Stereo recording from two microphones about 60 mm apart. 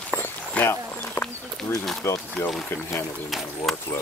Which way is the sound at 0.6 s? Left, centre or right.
Left.